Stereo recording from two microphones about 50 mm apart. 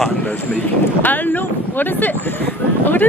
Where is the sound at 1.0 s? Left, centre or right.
Left.